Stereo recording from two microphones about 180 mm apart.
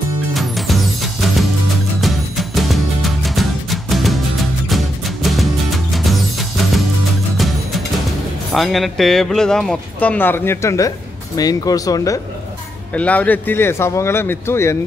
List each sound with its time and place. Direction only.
0.3 s music: centre (ahead or behind)
7.3 s speech: centre (ahead or behind); by 12.2 s 20° left (ahead or behind)
12.9 s speech: 10° left (ahead or behind)